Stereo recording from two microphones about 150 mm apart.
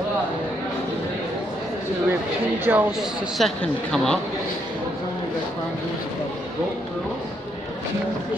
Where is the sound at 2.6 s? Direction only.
10° right (ahead or behind); by 4.2 s 5° left (ahead or behind).